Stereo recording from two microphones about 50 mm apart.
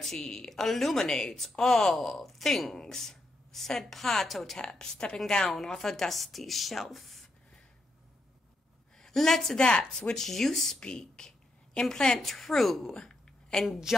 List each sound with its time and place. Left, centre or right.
0.0 s a woman's voice: centre
4.6 s a woman's voice: centre
9.0 s a woman's voice: centre
9.6 s speech: centre
10.8 s a woman's voice: centre
12.9 s a sound: centre
13.7 s a woman's voice: centre